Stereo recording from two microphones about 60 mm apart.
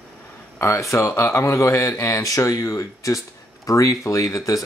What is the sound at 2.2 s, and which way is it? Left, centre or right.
Speech, left.